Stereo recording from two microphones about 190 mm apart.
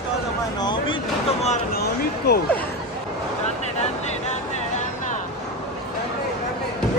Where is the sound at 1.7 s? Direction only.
55° left (ahead or behind).